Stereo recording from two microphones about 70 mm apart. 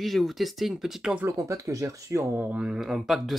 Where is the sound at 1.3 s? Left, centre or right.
Right.